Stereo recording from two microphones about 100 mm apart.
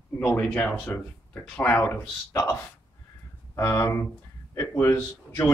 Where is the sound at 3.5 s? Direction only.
30° left (ahead or behind).